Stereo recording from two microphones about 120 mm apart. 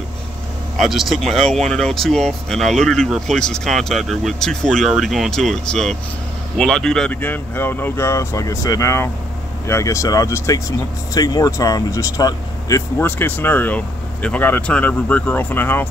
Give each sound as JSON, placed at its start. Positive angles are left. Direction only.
{"t": 0.7, "sound": "speech", "side_deg": 0}
{"t": 7.2, "sound": "speech", "side_deg": 15}
{"t": 12.9, "sound": "speech", "side_deg": 15}